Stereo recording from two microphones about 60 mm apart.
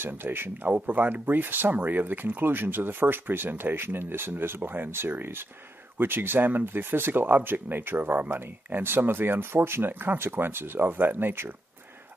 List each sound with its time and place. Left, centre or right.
0.0 s speech: right